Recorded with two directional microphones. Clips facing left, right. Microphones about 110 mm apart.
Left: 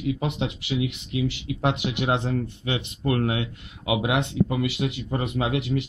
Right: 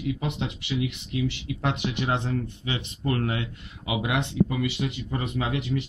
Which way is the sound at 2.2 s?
45° left (ahead or behind).